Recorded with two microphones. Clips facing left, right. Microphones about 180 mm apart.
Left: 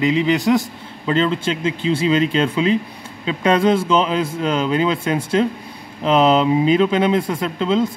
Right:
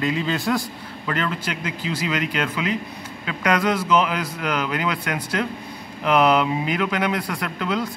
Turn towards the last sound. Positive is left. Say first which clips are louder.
# left 7 dB
turn(degrees=25)  # may be behind; listen again after turning